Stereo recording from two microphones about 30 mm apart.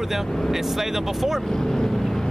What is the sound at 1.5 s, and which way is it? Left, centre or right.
Speech, centre.